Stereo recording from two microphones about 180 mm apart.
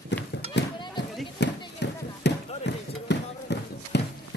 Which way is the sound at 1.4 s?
75° left (ahead or behind).